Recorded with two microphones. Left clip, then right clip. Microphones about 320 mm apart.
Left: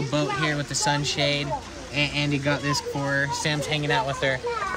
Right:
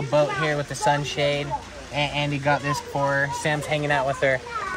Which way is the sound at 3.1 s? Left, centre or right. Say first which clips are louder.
Left 2 dB; centre.